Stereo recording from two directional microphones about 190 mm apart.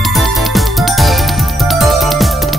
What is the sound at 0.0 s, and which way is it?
Music, centre (ahead or behind).